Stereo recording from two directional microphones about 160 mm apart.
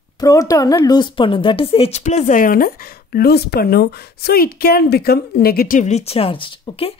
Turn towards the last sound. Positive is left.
turn(degrees=35)  # may be behind; listen again after turning